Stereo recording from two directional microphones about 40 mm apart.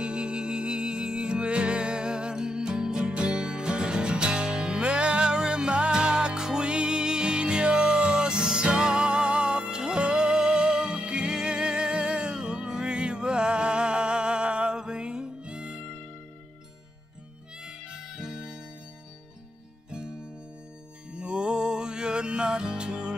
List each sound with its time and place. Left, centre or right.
0.0 s music: right
17.6 s harmonica: centre
19.9 s music: right